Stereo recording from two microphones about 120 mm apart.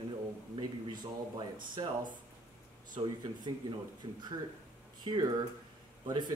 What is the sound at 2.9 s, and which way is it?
Speech, 35° right (ahead or behind).